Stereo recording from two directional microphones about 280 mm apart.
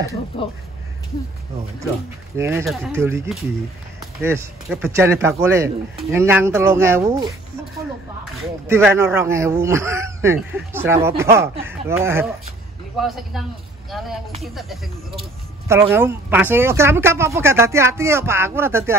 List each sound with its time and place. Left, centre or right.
0.3 s speech: centre
2.3 s speech: centre
8.6 s speech: centre